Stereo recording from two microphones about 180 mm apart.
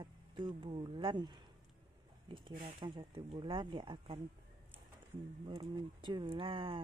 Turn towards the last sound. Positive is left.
turn(degrees=-30)  # may be behind; listen again after turning